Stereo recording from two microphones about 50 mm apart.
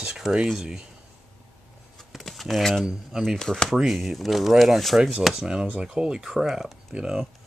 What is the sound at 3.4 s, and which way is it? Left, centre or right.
Speech, centre.